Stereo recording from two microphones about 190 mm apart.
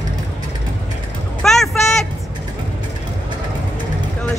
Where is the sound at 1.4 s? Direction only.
Centre (ahead or behind).